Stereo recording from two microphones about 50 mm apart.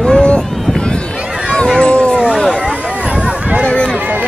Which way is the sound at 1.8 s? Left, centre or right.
Left.